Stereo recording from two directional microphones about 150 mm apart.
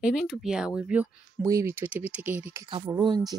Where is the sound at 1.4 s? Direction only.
20° right (ahead or behind).